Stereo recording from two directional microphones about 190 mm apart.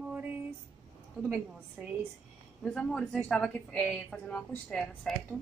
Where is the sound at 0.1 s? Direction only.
10° right (ahead or behind).